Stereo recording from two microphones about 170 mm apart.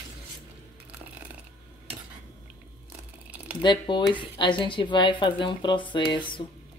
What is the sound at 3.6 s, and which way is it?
Speech, 25° left (ahead or behind).